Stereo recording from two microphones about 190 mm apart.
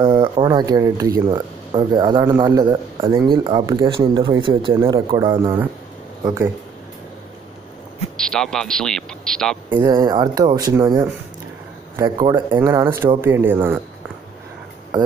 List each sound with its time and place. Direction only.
0.0 s speech: 25° right (ahead or behind)
8.2 s a man's voice: 5° left (ahead or behind)
9.8 s speech: 20° right (ahead or behind)